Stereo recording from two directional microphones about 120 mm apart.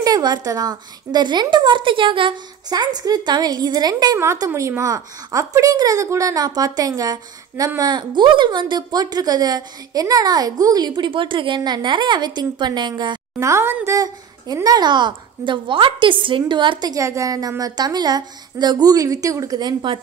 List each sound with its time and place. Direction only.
0.0 s a woman's voice: 35° right (ahead or behind)
13.4 s a woman's voice: 25° right (ahead or behind)